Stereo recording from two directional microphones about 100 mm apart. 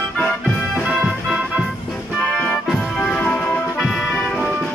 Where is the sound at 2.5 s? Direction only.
5° left (ahead or behind).